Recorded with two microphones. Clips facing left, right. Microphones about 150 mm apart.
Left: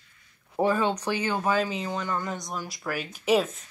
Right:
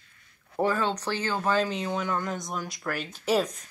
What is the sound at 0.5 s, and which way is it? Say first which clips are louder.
Speech: left 2 dB; 15° left (ahead or behind).